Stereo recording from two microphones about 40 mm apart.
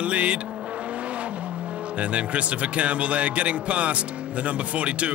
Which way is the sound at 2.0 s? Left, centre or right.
Right.